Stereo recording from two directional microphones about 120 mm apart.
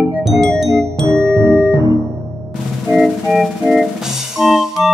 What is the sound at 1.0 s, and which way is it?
Music, 20° right (ahead or behind).